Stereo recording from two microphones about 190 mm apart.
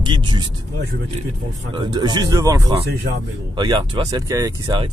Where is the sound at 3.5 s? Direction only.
25° right (ahead or behind).